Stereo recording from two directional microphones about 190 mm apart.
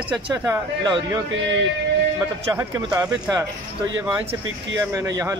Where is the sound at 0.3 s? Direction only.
20° right (ahead or behind).